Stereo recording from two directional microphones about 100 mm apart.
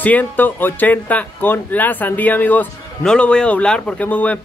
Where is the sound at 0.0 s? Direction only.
15° left (ahead or behind).